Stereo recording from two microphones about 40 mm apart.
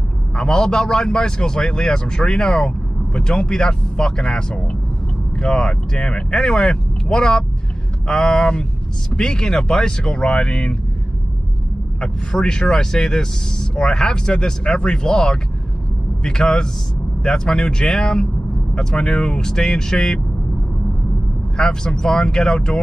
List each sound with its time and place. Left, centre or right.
0.4 s a man's voice: left
12.0 s a man's voice: centre
21.5 s a man's voice: left